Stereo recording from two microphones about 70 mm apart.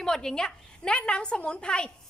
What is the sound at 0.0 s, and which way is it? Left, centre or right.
A woman's voice, centre.